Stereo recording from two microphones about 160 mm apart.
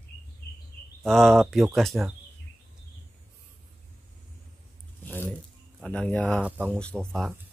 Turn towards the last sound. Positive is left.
turn(degrees=5)  # may be behind; listen again after turning